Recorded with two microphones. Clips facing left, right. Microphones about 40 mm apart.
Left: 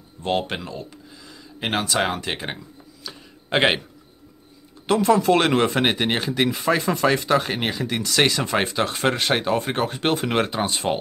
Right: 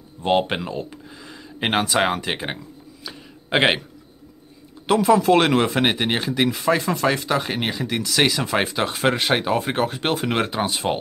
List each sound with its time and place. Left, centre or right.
0.2 s speech: centre
4.8 s speech: centre